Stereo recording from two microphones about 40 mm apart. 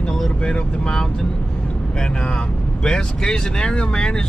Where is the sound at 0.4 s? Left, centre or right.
Centre.